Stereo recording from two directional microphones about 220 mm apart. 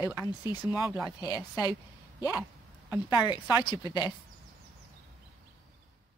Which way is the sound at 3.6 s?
20° left (ahead or behind).